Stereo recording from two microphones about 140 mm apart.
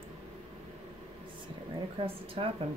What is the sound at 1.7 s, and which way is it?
Speech, 40° right (ahead or behind).